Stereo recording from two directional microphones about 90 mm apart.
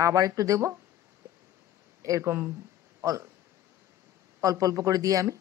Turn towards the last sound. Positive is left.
turn(degrees=-40)  # may be behind; listen again after turning